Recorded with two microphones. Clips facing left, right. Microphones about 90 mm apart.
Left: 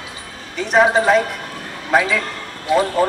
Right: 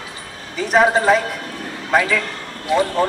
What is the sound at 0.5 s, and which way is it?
A man's voice, centre (ahead or behind).